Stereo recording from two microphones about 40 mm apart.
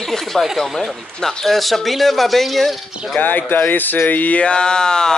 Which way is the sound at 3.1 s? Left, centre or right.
Left.